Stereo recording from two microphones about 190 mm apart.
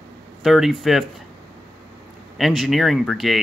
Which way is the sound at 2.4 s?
Centre (ahead or behind).